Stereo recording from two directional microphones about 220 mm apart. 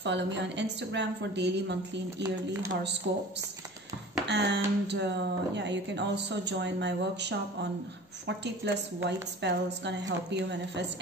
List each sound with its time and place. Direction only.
0.0 s a woman's voice: 50° right (ahead or behind)
4.3 s a woman's voice: 50° right (ahead or behind)